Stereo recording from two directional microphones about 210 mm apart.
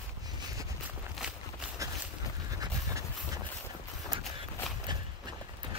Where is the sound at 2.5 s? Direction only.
15° right (ahead or behind).